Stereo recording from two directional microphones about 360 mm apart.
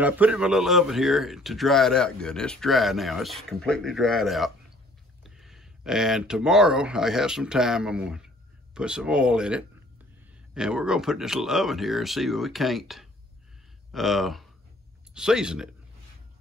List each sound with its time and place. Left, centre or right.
0.0 s a man's voice: centre